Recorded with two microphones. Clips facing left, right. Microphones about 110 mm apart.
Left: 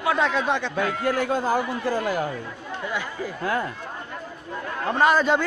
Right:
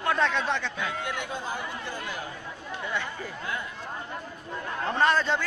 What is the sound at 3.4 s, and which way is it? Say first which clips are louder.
Speech: left 10 dB; 60° left (ahead or behind).